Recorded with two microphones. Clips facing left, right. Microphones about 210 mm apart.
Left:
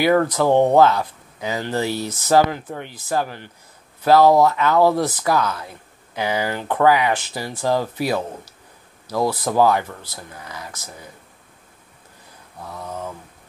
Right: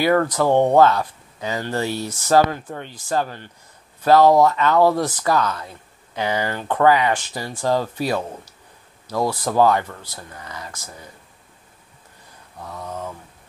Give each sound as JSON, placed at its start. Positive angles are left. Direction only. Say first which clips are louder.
{"t": 0.0, "sound": "speech", "louder": "left 1 dB", "side_deg": 10}
{"t": 12.6, "sound": "mantra", "louder": "even", "side_deg": 5}